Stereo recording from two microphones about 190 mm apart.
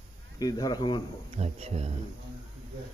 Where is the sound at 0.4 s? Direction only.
20° left (ahead or behind).